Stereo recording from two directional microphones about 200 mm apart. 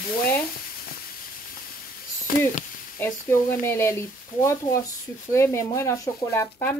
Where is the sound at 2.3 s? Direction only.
45° left (ahead or behind).